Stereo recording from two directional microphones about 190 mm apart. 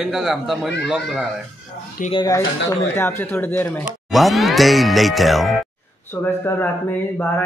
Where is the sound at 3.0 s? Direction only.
10° left (ahead or behind).